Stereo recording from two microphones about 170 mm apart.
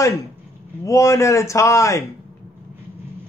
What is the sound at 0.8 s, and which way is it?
A man's voice, 20° left (ahead or behind).